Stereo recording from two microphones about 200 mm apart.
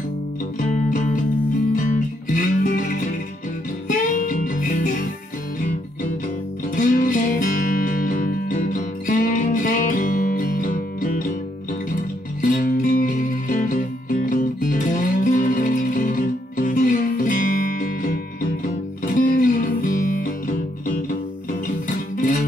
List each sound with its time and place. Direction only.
0.6 s music: 40° left (ahead or behind)
2.3 s music: 40° left (ahead or behind)
3.8 s music: 40° left (ahead or behind)
6.7 s music: 40° left (ahead or behind)
12.4 s music: 40° left (ahead or behind)
19.1 s music: 40° left (ahead or behind)